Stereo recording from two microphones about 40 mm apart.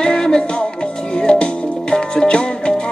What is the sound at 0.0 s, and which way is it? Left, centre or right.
Music, centre.